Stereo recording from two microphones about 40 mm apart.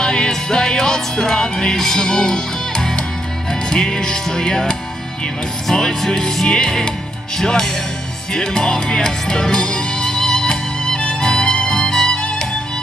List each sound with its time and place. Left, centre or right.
0.0 s music: left